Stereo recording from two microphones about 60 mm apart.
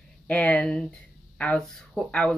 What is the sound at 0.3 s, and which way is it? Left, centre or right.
Speech, centre.